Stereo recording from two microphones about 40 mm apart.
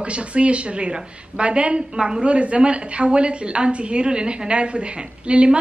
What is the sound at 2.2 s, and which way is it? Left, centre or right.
A woman's voice, right.